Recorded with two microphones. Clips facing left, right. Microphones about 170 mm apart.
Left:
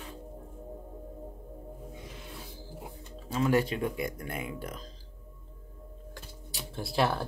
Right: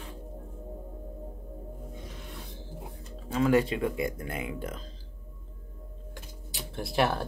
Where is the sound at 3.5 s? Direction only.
25° right (ahead or behind).